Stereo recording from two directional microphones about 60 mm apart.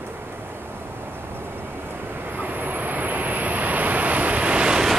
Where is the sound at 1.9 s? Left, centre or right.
Right; by 4.9 s centre.